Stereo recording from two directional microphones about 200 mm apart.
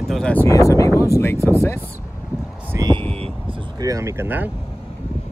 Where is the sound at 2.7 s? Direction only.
20° right (ahead or behind).